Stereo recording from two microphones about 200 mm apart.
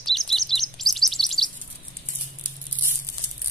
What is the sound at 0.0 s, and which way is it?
Chirp, centre (ahead or behind).